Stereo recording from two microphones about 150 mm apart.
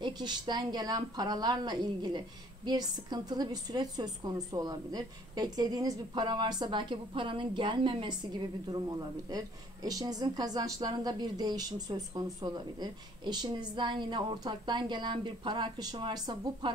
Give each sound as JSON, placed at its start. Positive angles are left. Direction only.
{"t": 0.0, "sound": "a woman's voice", "side_deg": -30}
{"t": 9.8, "sound": "a woman's voice", "side_deg": -25}